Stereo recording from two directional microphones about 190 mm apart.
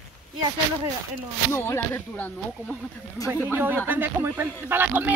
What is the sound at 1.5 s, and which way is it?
Speech, 15° left (ahead or behind).